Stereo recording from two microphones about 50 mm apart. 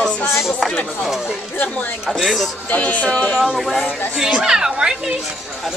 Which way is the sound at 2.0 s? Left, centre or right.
Centre.